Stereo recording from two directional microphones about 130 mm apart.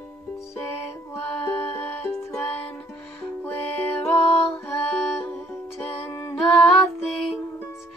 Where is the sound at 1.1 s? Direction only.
15° left (ahead or behind).